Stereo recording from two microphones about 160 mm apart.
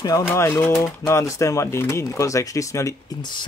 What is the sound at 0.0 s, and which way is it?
Speech, 20° left (ahead or behind).